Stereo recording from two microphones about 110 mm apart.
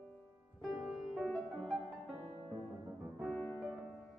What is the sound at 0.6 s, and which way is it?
Music, 5° right (ahead or behind).